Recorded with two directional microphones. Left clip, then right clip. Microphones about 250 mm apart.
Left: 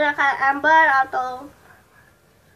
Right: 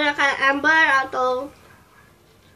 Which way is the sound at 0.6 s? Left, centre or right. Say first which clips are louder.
Left 3 dB; left.